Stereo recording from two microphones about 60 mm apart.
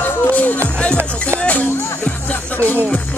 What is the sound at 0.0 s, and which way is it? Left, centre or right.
Music, left.